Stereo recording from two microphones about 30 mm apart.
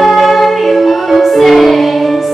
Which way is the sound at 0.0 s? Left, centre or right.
Centre.